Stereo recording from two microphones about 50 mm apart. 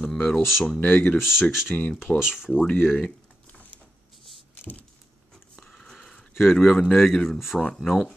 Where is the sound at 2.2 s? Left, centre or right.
Centre.